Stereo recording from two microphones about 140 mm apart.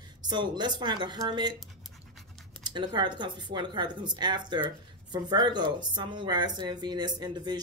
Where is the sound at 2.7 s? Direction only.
30° right (ahead or behind).